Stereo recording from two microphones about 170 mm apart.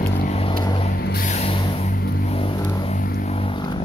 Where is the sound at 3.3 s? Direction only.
35° left (ahead or behind).